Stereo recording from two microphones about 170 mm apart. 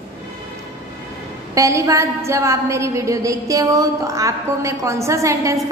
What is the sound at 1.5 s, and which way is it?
A woman's voice, 20° right (ahead or behind).